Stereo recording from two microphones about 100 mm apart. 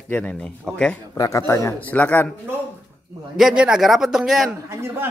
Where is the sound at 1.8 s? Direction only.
15° left (ahead or behind).